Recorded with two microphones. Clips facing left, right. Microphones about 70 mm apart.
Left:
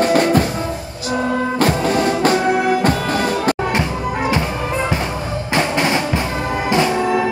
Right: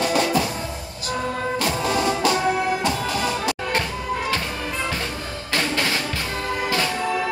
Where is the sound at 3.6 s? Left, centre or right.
Left.